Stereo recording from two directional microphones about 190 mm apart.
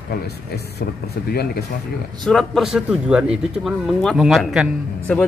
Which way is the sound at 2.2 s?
Centre (ahead or behind).